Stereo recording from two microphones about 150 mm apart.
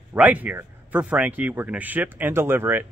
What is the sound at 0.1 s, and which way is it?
Speech, 10° right (ahead or behind).